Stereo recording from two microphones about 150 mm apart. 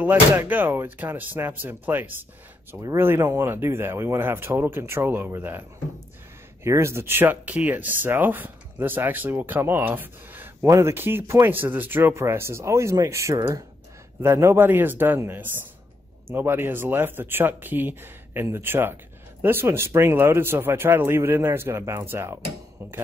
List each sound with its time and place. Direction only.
0.0 s speech: 15° right (ahead or behind)